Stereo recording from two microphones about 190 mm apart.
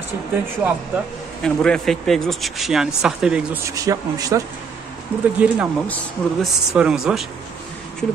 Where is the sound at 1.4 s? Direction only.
5° left (ahead or behind).